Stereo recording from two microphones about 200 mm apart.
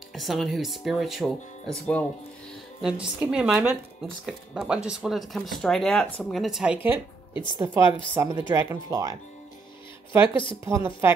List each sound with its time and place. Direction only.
0.1 s speech: centre (ahead or behind); by 9.1 s 15° right (ahead or behind)
10.3 s a woman's voice: 25° left (ahead or behind)
10.6 s speech: 15° right (ahead or behind)